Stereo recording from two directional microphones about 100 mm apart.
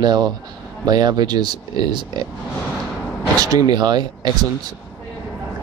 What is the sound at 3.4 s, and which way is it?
Speech, 40° right (ahead or behind).